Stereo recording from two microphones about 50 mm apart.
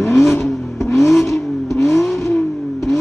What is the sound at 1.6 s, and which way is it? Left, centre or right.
Vehicle, left.